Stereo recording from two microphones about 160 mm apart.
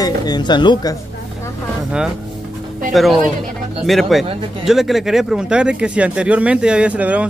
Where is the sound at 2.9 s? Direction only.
Centre (ahead or behind).